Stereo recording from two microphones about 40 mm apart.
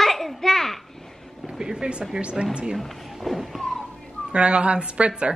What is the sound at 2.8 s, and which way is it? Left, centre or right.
Music, centre.